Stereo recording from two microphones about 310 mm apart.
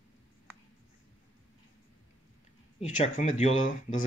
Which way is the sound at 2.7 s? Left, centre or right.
Left.